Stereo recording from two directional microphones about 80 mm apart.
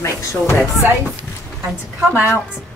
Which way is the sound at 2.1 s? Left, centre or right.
Right.